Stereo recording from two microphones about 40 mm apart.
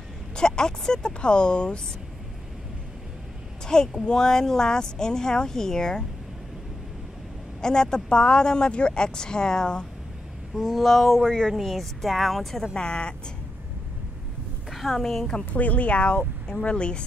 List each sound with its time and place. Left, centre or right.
0.4 s speech: centre
3.6 s speech: centre
7.6 s speech: centre
10.5 s speech: centre
11.1 s speech: centre
12.7 s speech: left
14.7 s a sound: centre
15.0 s speech: centre
15.5 s speech: left
16.2 s speech: centre